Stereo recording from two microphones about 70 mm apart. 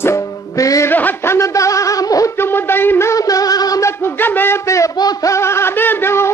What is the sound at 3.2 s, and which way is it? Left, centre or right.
Music, left.